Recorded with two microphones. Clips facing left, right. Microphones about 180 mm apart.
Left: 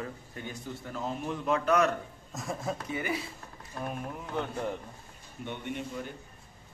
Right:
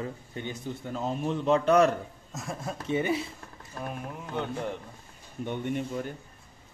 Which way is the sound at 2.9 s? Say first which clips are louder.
Right 9 dB; 25° right (ahead or behind).